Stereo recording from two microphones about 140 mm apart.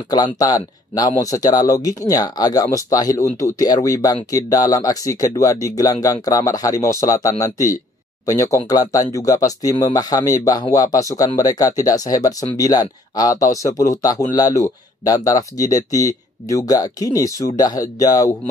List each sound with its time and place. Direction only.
0.1 s speech: 25° left (ahead or behind)